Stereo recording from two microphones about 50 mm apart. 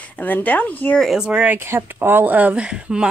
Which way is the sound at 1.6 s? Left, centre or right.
Right.